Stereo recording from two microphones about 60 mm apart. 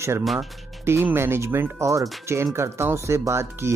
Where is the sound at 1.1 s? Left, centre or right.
Right.